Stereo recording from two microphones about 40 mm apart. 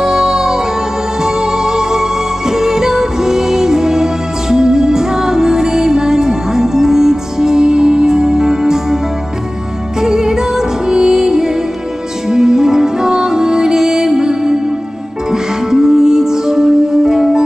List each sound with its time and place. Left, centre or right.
0.0 s music: centre